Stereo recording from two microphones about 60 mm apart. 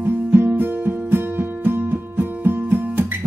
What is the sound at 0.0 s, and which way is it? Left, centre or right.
Music, right.